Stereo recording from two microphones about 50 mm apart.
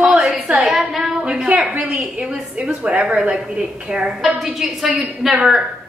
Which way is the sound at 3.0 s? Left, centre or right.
Right.